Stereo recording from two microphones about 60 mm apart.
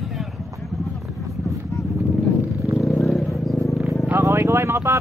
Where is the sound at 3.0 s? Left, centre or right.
Centre.